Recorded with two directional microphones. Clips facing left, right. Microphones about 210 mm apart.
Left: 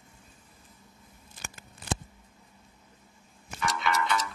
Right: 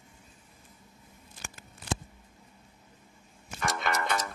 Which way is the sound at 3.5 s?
50° right (ahead or behind).